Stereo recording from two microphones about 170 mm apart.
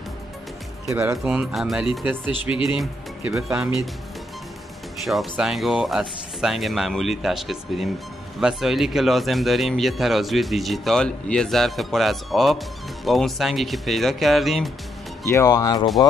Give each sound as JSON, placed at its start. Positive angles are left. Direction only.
{"t": 0.8, "sound": "speech", "side_deg": -10}
{"t": 5.0, "sound": "speech", "side_deg": 0}
{"t": 15.2, "sound": "speech", "side_deg": 20}